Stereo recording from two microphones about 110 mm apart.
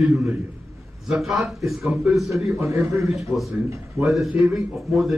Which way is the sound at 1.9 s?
5° right (ahead or behind).